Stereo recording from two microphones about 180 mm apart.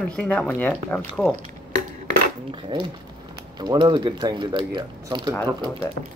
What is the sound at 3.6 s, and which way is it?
Speech, 25° right (ahead or behind).